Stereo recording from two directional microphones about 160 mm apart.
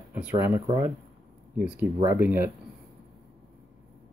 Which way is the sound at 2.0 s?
10° right (ahead or behind).